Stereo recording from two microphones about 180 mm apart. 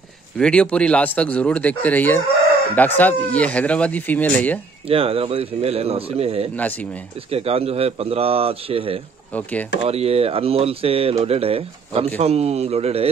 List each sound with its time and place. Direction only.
0.4 s speech: 5° left (ahead or behind)
4.8 s speech: 30° right (ahead or behind)
6.5 s speech: 10° left (ahead or behind)
7.2 s speech: 35° right (ahead or behind)
9.3 s speech: 10° left (ahead or behind)
9.8 s speech: 35° right (ahead or behind)